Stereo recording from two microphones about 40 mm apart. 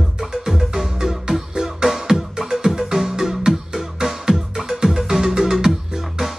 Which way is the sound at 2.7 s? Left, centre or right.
Centre.